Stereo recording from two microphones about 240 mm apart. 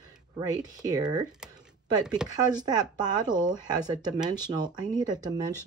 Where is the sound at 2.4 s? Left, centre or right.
Centre.